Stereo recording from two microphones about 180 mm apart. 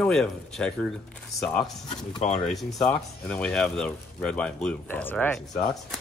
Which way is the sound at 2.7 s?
5° left (ahead or behind).